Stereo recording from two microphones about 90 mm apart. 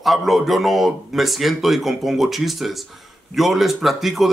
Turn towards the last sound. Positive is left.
turn(degrees=0)  # may be behind; listen again after turning